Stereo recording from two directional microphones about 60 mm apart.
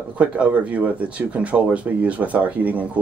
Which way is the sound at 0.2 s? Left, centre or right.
Right.